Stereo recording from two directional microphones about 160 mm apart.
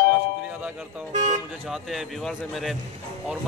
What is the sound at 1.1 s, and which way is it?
Speech, 45° right (ahead or behind).